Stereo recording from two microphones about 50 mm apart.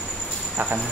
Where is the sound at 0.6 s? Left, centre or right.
Right.